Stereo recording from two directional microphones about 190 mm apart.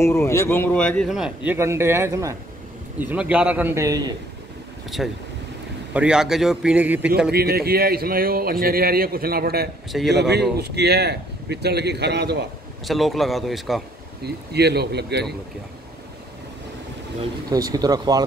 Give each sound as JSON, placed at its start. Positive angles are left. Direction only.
{"t": 0.0, "sound": "a man's voice", "side_deg": 15}
{"t": 4.8, "sound": "a man's voice", "side_deg": 0}
{"t": 7.2, "sound": "a man's voice", "side_deg": -55}
{"t": 12.8, "sound": "a man's voice", "side_deg": 0}
{"t": 14.2, "sound": "a man's voice", "side_deg": -60}
{"t": 17.5, "sound": "speech", "side_deg": -20}